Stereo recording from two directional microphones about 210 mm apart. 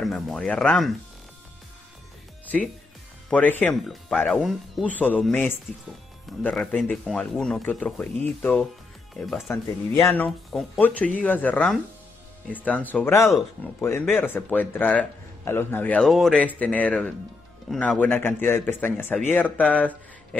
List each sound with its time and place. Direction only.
0.0 s a man's voice: centre (ahead or behind)
2.4 s a man's voice: 5° left (ahead or behind)